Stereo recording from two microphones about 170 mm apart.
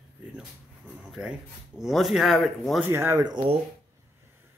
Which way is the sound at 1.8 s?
Centre (ahead or behind).